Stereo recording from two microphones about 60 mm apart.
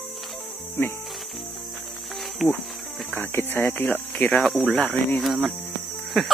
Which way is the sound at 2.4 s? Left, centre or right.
Centre.